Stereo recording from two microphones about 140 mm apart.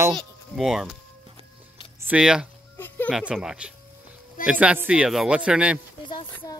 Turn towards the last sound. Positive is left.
turn(degrees=35)  # may be behind; listen again after turning